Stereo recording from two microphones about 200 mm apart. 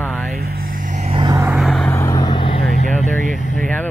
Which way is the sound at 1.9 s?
15° left (ahead or behind).